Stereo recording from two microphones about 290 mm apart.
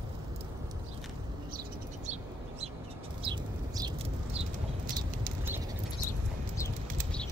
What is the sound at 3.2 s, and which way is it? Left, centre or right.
Bird, centre.